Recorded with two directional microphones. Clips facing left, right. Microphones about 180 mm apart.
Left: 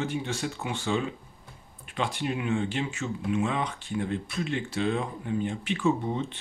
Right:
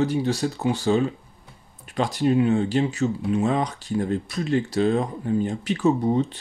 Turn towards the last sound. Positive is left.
turn(degrees=-40)  # may be behind; listen again after turning